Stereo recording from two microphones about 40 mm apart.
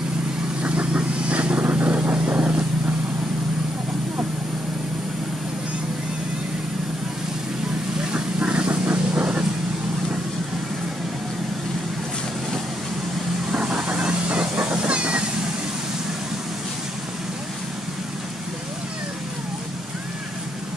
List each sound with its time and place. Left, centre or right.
0.6 s vehicle: right
1.6 s vehicle: right
8.1 s vehicle: right
13.5 s vehicle: right
14.6 s a sound: right